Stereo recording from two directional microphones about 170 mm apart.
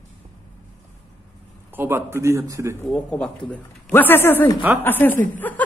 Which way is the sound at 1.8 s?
15° right (ahead or behind).